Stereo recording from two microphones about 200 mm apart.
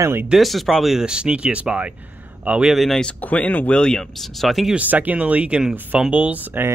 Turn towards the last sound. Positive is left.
turn(degrees=-10)  # may be behind; listen again after turning